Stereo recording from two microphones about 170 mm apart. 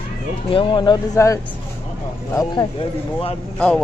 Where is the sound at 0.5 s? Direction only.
30° left (ahead or behind).